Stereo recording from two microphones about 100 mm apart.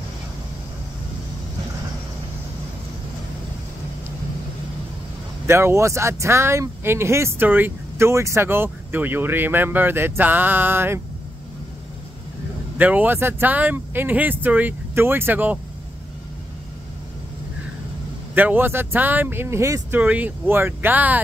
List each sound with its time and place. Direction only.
5.5 s speech: 25° right (ahead or behind)
12.7 s speech: 15° right (ahead or behind)
18.3 s speech: 20° right (ahead or behind)
20.0 s speech: 15° right (ahead or behind)